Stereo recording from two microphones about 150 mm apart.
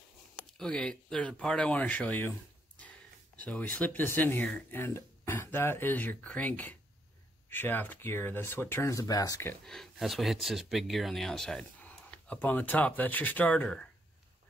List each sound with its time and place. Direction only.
0.6 s speech: 5° left (ahead or behind)
3.3 s speech: 10° left (ahead or behind)
9.7 s speech: centre (ahead or behind)